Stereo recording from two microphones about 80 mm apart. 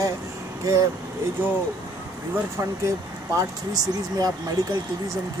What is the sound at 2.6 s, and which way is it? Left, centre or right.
Speech, right.